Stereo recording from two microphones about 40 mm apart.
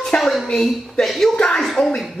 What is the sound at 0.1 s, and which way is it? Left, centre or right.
Speech, left.